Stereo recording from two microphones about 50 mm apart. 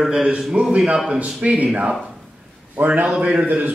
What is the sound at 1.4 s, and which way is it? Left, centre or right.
A man's voice, right.